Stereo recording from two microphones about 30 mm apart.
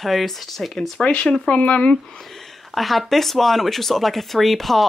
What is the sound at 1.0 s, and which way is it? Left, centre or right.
Speech, left.